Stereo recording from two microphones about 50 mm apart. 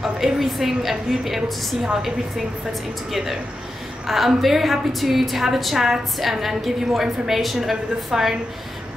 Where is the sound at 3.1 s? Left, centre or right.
Centre.